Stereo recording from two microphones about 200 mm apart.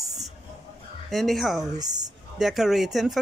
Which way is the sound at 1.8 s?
20° right (ahead or behind).